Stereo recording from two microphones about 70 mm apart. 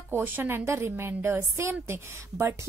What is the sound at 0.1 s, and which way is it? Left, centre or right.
A woman's voice, right.